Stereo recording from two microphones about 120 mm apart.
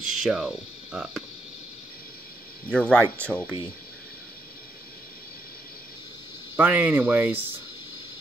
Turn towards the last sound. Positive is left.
turn(degrees=-15)  # may be behind; listen again after turning